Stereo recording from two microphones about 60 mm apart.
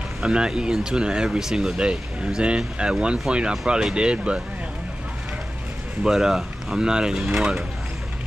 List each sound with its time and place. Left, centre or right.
0.2 s speech: centre
6.0 s speech: centre